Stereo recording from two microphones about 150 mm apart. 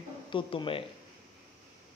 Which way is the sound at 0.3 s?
35° left (ahead or behind).